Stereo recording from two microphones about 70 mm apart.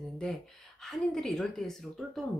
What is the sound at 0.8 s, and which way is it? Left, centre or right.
A woman's voice, centre.